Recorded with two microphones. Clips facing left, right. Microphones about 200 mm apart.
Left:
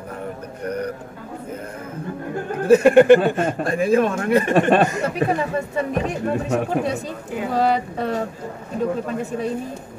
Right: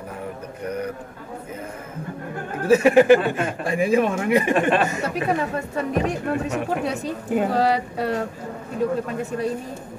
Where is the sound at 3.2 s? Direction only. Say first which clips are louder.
Left 4 dB; 45° left (ahead or behind).